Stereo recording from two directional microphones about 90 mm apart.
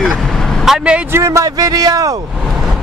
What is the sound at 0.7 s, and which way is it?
Speech, 10° right (ahead or behind).